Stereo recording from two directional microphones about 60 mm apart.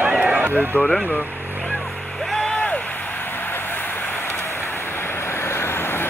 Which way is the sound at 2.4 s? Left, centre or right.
Centre.